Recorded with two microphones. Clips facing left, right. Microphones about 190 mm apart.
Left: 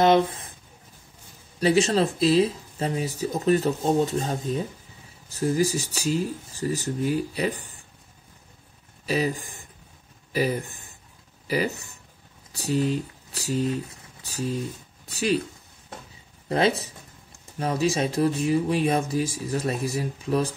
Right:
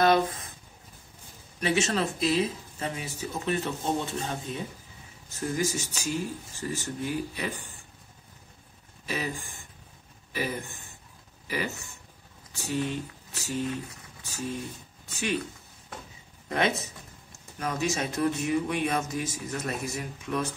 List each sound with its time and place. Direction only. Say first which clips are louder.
0.0 s a sound: left 4 dB; 25° left (ahead or behind)
1.6 s speech: left 6 dB; 35° left (ahead or behind)
9.0 s speech: left 8 dB; 35° left (ahead or behind)
16.4 s speech: left 5 dB; 30° left (ahead or behind)